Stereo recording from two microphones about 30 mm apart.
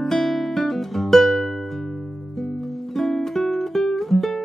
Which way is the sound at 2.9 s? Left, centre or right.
Centre.